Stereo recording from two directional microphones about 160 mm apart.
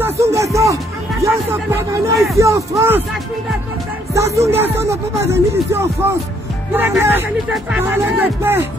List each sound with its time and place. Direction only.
0.0 s music: 20° right (ahead or behind)
1.2 s speech: 15° right (ahead or behind)
4.1 s speech: 20° right (ahead or behind)